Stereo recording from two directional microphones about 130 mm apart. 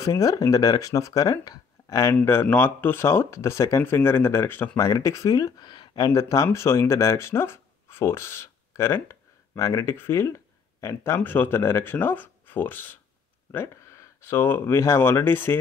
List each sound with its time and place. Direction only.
0.0 s speech: 25° left (ahead or behind)